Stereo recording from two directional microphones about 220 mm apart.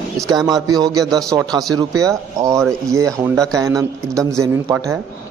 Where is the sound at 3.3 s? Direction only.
5° left (ahead or behind).